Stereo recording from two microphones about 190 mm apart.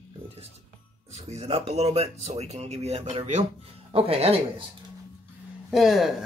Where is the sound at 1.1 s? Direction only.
35° right (ahead or behind).